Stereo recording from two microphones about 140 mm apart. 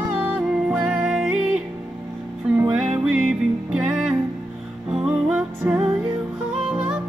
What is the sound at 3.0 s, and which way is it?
Music, 5° right (ahead or behind).